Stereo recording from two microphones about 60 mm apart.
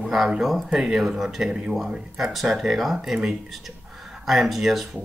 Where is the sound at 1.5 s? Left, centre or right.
Centre.